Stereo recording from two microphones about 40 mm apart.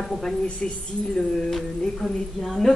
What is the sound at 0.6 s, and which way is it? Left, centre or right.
Speech, left.